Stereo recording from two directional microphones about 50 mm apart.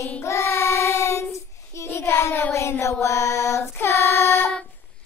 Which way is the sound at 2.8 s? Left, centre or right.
Left.